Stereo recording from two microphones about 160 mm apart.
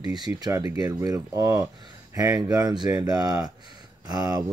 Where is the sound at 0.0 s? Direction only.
25° right (ahead or behind).